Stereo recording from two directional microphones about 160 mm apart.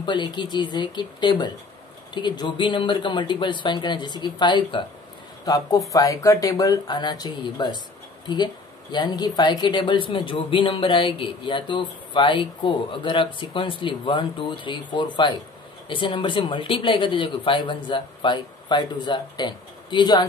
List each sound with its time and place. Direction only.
0.0 s speech: 30° left (ahead or behind)
8.9 s speech: 25° left (ahead or behind)